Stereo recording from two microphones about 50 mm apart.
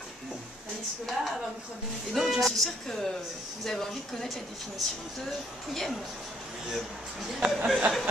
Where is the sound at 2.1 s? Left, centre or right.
Centre.